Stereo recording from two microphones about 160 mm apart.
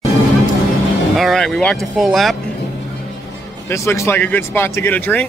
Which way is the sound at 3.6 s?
15° left (ahead or behind).